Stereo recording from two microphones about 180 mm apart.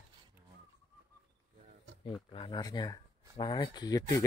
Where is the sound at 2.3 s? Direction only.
25° left (ahead or behind).